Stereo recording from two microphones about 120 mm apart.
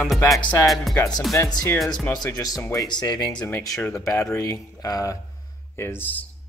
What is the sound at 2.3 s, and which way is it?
Speech, 30° left (ahead or behind).